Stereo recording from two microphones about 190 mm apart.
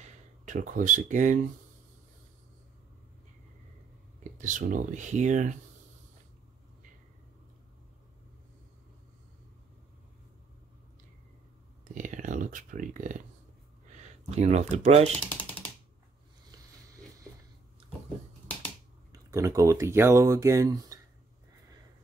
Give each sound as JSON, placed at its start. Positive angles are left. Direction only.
{"t": 0.0, "sound": "speech", "side_deg": -40}
{"t": 4.2, "sound": "speech", "side_deg": -40}
{"t": 11.9, "sound": "a sound", "side_deg": -40}
{"t": 13.8, "sound": "speech", "side_deg": -40}
{"t": 19.3, "sound": "speech", "side_deg": -15}